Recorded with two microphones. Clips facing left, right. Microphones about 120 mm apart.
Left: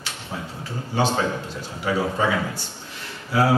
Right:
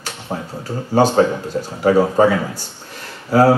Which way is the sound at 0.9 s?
45° right (ahead or behind).